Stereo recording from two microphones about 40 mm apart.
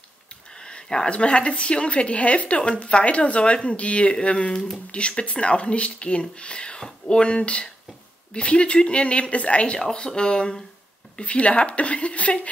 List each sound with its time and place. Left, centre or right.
0.7 s a woman's voice: left
9.8 s a woman's voice: centre